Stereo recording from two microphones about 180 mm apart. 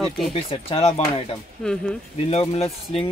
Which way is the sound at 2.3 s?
35° left (ahead or behind).